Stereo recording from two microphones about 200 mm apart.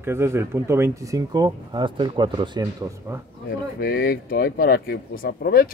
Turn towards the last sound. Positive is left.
turn(degrees=45)  # may be behind; listen again after turning